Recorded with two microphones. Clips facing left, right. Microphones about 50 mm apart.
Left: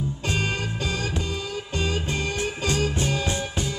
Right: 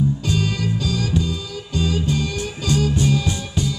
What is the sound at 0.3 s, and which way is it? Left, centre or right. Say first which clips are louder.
Music: right 4 dB; left.